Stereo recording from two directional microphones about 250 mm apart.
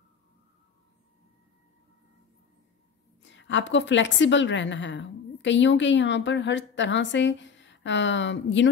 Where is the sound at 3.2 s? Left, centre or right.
Left.